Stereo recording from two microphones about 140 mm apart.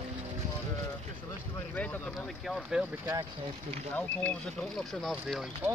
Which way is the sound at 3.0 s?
25° right (ahead or behind).